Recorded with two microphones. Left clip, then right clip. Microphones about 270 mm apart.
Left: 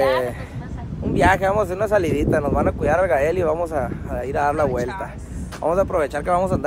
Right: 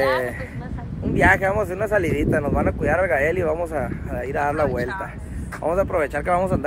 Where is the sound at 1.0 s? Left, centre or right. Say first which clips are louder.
Even; centre.